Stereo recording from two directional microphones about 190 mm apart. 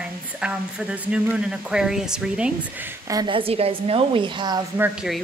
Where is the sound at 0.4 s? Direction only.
5° right (ahead or behind).